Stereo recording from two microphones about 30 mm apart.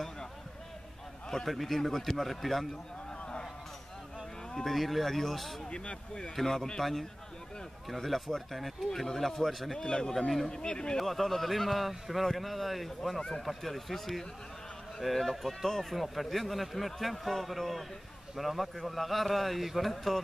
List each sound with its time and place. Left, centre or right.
1.5 s a man's voice: centre
4.6 s a man's voice: centre
6.4 s a man's voice: centre
6.8 s a man's voice: centre
9.0 s a man's voice: centre
9.5 s a man's voice: centre
9.8 s speech: left
11.0 s a man's voice: centre